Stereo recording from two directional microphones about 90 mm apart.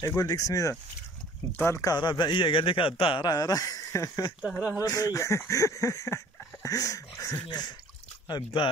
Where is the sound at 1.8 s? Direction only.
50° left (ahead or behind); by 3.2 s 90° left.